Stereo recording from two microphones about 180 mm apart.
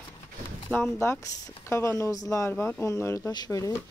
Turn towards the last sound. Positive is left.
turn(degrees=20)  # may be behind; listen again after turning